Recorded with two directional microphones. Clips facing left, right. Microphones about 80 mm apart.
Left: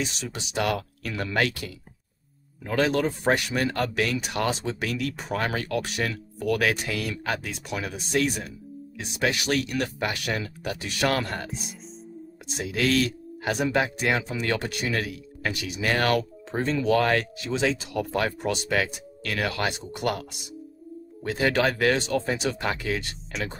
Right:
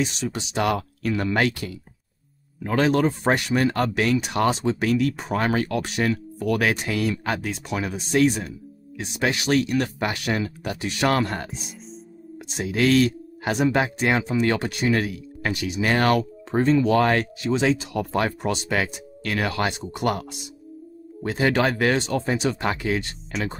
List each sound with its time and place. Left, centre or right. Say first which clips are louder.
0.3 s speech: even; right
2.6 s speech: right 4 dB; right
13.4 s speech: right 3 dB; right